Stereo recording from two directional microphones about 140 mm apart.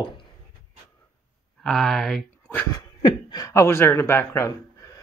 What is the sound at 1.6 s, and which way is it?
Speech, 5° left (ahead or behind).